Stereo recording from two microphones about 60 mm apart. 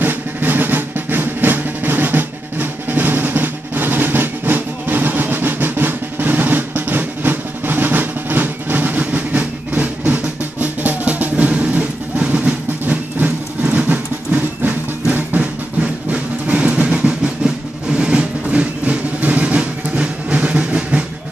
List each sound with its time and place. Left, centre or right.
0.0 s drum: right
15.8 s music: right